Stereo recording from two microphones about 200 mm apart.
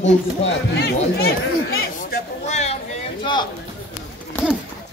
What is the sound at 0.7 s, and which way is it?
Speech, 50° left (ahead or behind).